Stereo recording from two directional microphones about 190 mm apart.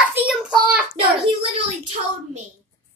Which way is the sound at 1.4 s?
35° right (ahead or behind).